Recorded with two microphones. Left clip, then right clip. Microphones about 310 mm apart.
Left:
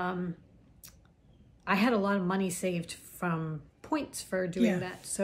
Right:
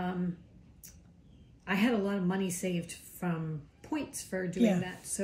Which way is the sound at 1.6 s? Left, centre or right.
Centre.